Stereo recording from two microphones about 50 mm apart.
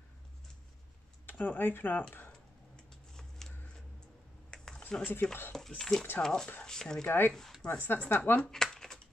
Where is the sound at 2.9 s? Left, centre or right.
Centre.